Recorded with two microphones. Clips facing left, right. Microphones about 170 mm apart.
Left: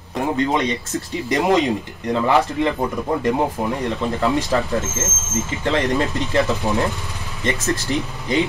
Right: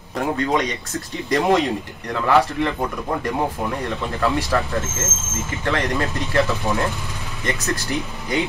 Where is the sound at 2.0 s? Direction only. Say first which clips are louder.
Left 1 dB; 20° left (ahead or behind).